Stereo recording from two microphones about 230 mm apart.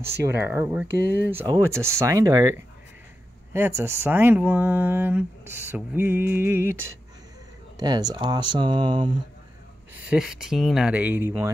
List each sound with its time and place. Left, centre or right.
0.2 s speech: centre
10.0 s speech: centre